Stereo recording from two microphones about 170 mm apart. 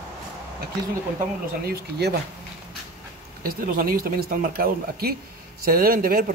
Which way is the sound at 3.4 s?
60° right (ahead or behind).